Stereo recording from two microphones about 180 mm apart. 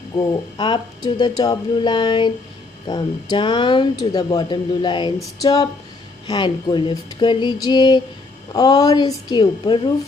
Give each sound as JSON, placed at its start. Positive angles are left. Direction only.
{"t": 0.3, "sound": "speech", "side_deg": 25}